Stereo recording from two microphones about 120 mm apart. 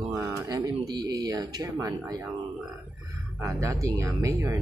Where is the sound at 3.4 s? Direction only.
25° right (ahead or behind).